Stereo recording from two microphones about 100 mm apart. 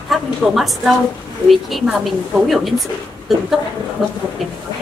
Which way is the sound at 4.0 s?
5° right (ahead or behind).